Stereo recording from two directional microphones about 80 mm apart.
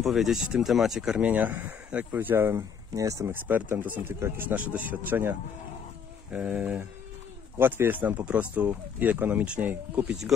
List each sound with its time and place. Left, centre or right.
0.0 s speech: centre
1.1 s speech: centre
2.9 s speech: right
3.4 s speech: right
6.3 s speech: centre